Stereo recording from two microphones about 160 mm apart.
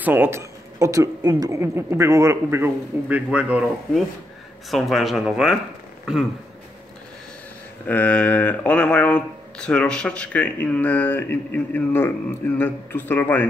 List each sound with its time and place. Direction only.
0.0 s speech: 15° right (ahead or behind)
7.8 s speech: 10° left (ahead or behind)